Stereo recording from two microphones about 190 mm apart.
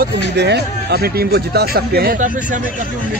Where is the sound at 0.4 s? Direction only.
60° right (ahead or behind); by 2.6 s 45° right (ahead or behind).